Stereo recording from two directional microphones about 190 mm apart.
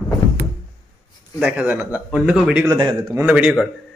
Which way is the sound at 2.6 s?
15° right (ahead or behind).